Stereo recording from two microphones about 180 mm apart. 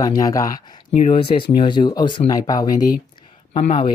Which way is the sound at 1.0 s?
30° left (ahead or behind).